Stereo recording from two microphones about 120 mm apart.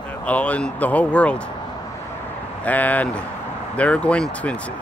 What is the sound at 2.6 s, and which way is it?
Speech, 15° left (ahead or behind).